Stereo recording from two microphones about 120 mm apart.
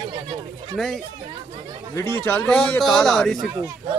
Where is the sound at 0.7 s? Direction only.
Centre (ahead or behind).